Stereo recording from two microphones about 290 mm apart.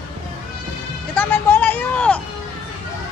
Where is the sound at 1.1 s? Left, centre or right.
Centre.